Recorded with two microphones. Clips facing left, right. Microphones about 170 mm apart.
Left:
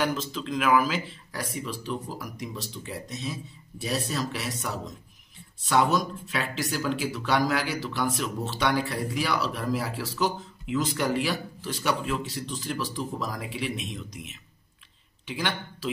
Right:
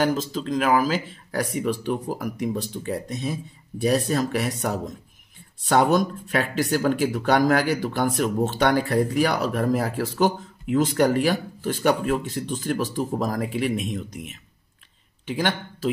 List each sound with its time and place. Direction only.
0.0 s speech: 40° right (ahead or behind)